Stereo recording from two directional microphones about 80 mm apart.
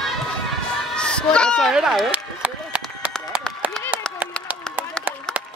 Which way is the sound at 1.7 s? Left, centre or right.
Centre.